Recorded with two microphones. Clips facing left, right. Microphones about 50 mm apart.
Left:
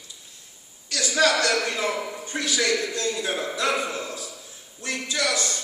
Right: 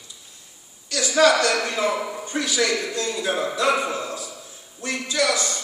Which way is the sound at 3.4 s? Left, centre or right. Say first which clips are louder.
Right 6 dB; right.